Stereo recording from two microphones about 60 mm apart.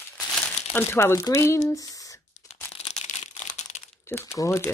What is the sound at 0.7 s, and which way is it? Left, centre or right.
Speech, left.